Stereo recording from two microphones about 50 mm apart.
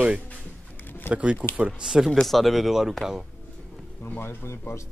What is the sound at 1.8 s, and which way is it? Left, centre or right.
Speech, centre.